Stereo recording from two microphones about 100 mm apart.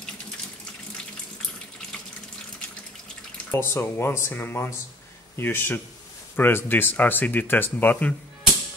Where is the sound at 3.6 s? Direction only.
25° left (ahead or behind).